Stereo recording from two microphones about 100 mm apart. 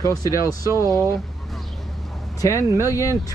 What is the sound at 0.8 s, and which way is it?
Speech, 30° right (ahead or behind).